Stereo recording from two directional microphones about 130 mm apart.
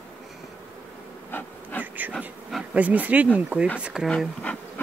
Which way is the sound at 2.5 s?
10° right (ahead or behind).